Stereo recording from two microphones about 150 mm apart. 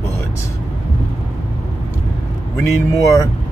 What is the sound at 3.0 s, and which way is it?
Speech, 20° left (ahead or behind).